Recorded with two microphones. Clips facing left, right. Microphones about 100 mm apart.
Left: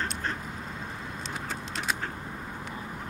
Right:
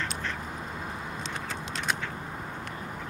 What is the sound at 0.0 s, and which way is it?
Duck, 40° left (ahead or behind).